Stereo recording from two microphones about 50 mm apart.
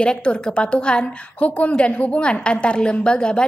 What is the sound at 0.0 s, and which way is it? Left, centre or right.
A woman's voice, left.